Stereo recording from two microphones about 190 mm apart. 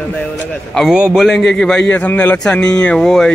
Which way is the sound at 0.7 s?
5° right (ahead or behind).